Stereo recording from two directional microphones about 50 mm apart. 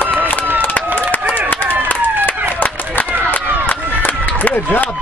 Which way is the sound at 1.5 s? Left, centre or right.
Left.